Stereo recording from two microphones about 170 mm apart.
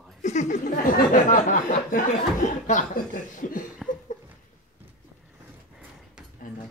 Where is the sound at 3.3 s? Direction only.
50° left (ahead or behind).